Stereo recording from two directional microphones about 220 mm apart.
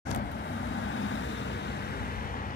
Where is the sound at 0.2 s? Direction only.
55° left (ahead or behind); by 2.5 s 40° left (ahead or behind).